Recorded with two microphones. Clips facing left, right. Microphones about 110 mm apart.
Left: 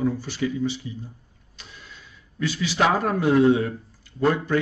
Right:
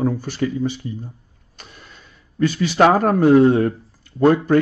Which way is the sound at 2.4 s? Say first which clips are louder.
Right 7 dB; 50° right (ahead or behind).